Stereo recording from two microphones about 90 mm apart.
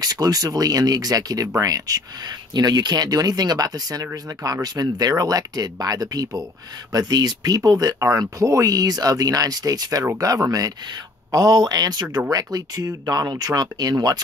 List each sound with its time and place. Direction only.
0.0 s speech: 45° right (ahead or behind)